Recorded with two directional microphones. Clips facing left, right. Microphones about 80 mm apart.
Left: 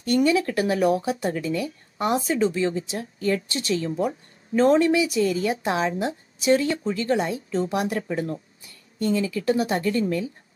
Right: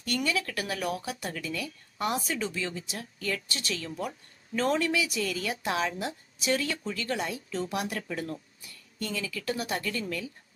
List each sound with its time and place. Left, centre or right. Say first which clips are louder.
0.0 s speech: left 10 dB; left